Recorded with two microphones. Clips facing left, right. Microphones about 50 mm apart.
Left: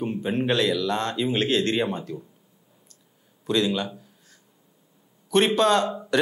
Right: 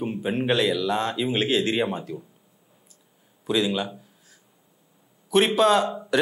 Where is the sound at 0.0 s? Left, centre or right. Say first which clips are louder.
Even; centre.